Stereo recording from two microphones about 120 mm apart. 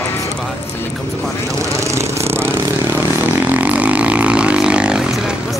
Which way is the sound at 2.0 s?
20° right (ahead or behind).